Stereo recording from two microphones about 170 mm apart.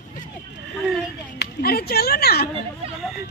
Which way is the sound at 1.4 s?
65° left (ahead or behind).